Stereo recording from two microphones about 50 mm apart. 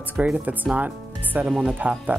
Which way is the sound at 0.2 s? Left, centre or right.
Right.